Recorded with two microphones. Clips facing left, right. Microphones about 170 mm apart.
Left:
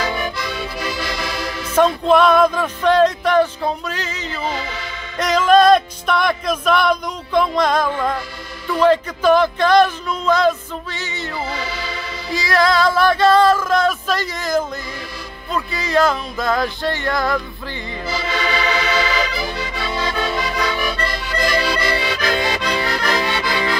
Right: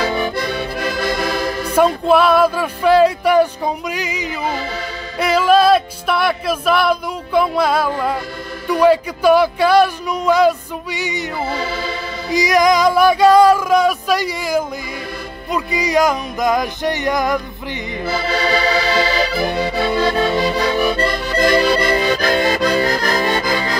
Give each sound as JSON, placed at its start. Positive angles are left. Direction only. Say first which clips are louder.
{"t": 0.0, "sound": "accordion", "louder": "right 4 dB", "side_deg": -40}
{"t": 0.4, "sound": "accordion", "louder": "right 4 dB", "side_deg": -55}
{"t": 2.0, "sound": "speech", "louder": "left 1 dB", "side_deg": -5}
{"t": 5.1, "sound": "music", "louder": "even", "side_deg": -10}
{"t": 8.6, "sound": "speech", "louder": "right 2 dB", "side_deg": -10}
{"t": 12.3, "sound": "speech", "louder": "right 4 dB", "side_deg": -15}
{"t": 18.2, "sound": "accordion", "louder": "right 3 dB", "side_deg": -35}
{"t": 19.3, "sound": "accordion", "louder": "right 7 dB", "side_deg": -55}
{"t": 19.7, "sound": "music", "louder": "right 7 dB", "side_deg": -40}
{"t": 20.9, "sound": "accordion", "louder": "right 5 dB", "side_deg": -55}